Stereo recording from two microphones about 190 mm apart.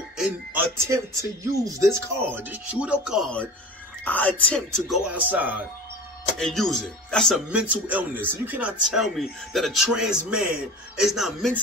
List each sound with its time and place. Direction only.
0.2 s speech: 15° right (ahead or behind)
6.4 s speech: centre (ahead or behind)